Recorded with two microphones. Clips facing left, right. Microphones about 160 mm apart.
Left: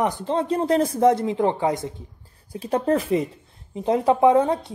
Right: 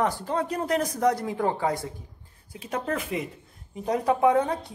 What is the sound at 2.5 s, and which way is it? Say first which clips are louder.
A woman's voice: left 8 dB; 35° left (ahead or behind).